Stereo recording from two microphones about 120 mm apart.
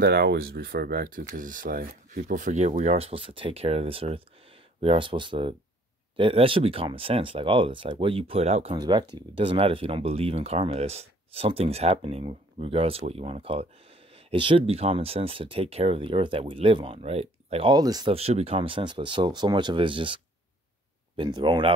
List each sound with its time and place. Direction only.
1.4 s speech: 90° right; by 8.7 s 65° right (ahead or behind)
8.7 s speech: 35° right (ahead or behind)
9.1 s speech: 50° right (ahead or behind)
17.6 s speech: 35° right (ahead or behind)
18.1 s speech: 55° right (ahead or behind)
21.2 s speech: 40° right (ahead or behind)